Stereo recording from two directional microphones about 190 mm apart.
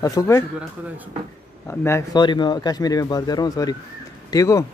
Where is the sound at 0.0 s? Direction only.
15° left (ahead or behind).